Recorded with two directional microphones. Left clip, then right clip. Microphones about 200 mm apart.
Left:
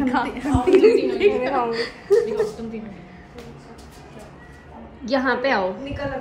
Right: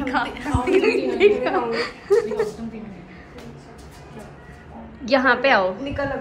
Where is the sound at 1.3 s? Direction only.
5° left (ahead or behind).